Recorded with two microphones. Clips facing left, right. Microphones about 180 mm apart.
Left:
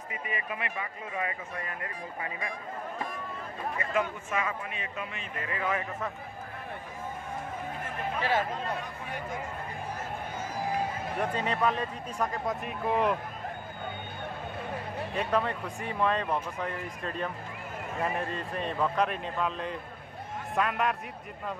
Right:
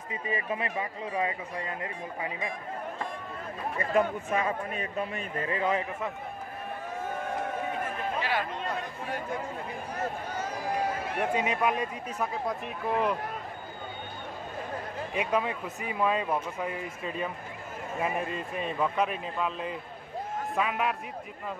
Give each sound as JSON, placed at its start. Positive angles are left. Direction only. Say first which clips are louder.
{"t": 0.3, "sound": "speech", "louder": "right 5 dB", "side_deg": -30}
{"t": 3.7, "sound": "a man's voice", "louder": "right 5 dB", "side_deg": -35}
{"t": 7.1, "sound": "a sound", "louder": "right 5 dB", "side_deg": -75}
{"t": 8.2, "sound": "speech", "louder": "left 4 dB", "side_deg": 45}
{"t": 11.3, "sound": "speech", "louder": "right 1 dB", "side_deg": -10}
{"t": 15.1, "sound": "speech", "louder": "even", "side_deg": -10}